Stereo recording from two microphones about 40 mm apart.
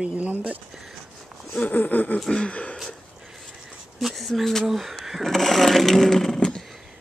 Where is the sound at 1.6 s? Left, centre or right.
Left.